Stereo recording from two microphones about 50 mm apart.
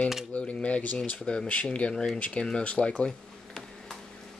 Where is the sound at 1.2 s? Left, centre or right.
Centre.